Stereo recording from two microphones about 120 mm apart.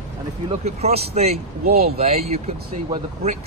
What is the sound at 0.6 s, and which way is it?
Speech, 60° right (ahead or behind).